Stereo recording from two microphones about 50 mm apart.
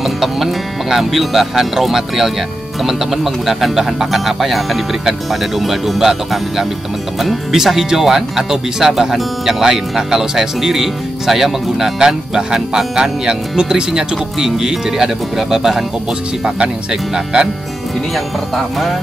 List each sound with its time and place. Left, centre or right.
0.0 s speech: centre
16.4 s speech: centre